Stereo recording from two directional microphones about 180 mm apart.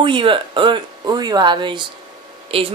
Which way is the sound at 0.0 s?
30° right (ahead or behind).